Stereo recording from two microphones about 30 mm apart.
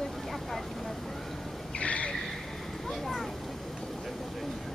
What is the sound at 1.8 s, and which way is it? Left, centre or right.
Vehicle, left.